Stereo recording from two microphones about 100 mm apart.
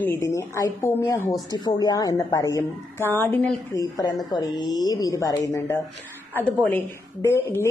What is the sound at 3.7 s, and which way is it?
Speech, 40° left (ahead or behind).